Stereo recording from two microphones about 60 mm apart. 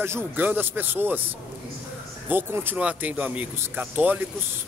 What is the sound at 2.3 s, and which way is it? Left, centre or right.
Speech, right.